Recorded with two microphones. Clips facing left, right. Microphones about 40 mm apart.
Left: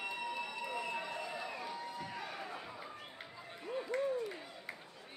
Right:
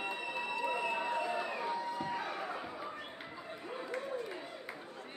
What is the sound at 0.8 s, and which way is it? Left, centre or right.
Crowd, right.